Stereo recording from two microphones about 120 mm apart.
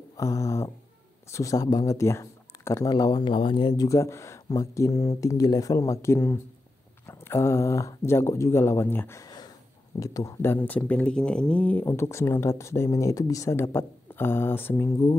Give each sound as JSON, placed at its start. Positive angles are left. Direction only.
{"t": 0.2, "sound": "speech", "side_deg": 25}
{"t": 9.2, "sound": "a sound", "side_deg": 35}
{"t": 9.9, "sound": "speech", "side_deg": 30}